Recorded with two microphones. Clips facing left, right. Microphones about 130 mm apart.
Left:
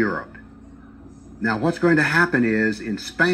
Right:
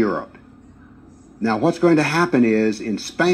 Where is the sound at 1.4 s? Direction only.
35° right (ahead or behind).